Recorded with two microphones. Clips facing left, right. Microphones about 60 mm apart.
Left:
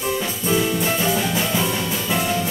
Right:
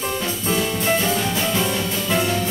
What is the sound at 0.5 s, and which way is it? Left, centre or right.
Music, centre.